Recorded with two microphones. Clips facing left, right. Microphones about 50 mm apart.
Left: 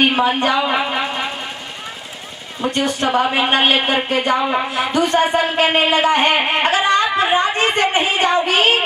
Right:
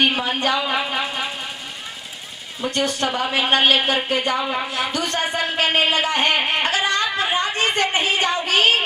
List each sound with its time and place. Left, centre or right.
0.0 s a sound: centre
2.6 s speech: centre
8.2 s child singing: centre